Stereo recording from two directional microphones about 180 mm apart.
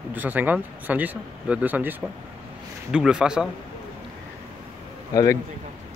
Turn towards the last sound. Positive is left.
turn(degrees=20)  # may be behind; listen again after turning